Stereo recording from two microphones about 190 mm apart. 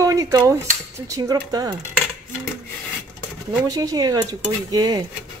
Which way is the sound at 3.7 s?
20° right (ahead or behind).